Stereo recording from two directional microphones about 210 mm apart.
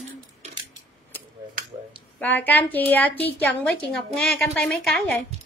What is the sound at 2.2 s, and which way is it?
A woman's voice, 10° left (ahead or behind).